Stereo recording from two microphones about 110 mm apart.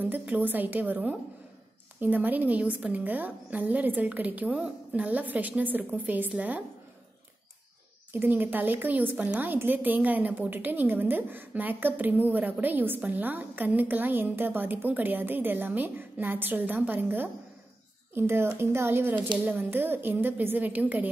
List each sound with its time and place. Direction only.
0.0 s a woman's voice: 15° right (ahead or behind)
8.1 s a woman's voice: 20° right (ahead or behind)